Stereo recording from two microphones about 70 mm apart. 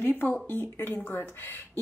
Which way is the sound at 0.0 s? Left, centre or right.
Left.